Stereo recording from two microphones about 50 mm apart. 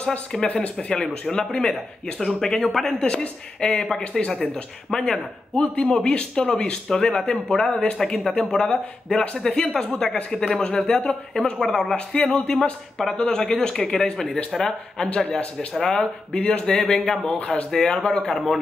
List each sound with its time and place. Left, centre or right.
0.6 s a man's voice: centre
4.9 s a man's voice: centre
16.3 s speech: left
16.7 s a man's voice: centre